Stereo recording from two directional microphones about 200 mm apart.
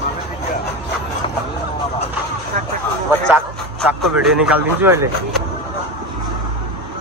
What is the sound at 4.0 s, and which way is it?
Speech, 5° right (ahead or behind).